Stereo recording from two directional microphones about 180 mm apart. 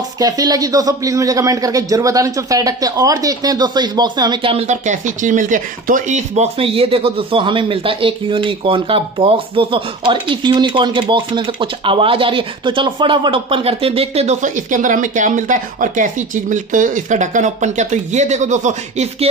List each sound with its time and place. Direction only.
0.2 s speech: 20° right (ahead or behind); by 19.2 s 40° right (ahead or behind)